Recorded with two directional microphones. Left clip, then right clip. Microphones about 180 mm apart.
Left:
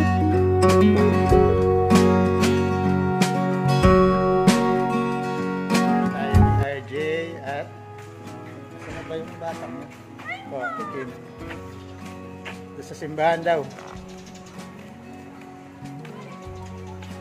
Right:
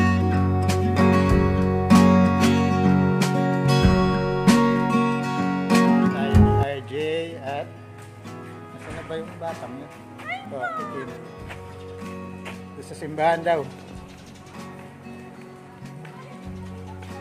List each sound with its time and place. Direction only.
0.0 s music: centre (ahead or behind)
6.6 s music: 15° right (ahead or behind)
10.2 s music: 10° right (ahead or behind)
13.0 s speech: 5° left (ahead or behind)